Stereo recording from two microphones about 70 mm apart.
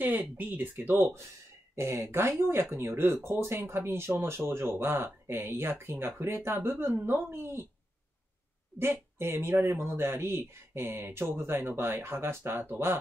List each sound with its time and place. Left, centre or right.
0.0 s speech: right
9.2 s speech: right